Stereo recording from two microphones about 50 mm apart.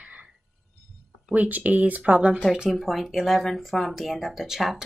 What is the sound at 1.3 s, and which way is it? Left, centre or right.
Speech, right.